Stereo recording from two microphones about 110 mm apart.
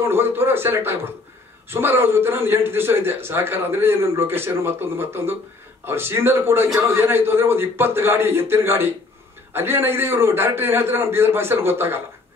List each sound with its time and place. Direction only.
0.1 s a man's voice: 20° right (ahead or behind)